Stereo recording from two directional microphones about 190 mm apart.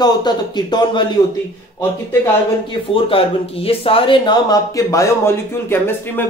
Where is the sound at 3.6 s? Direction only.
30° left (ahead or behind).